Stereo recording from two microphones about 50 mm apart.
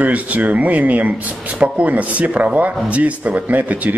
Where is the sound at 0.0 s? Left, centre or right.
Right.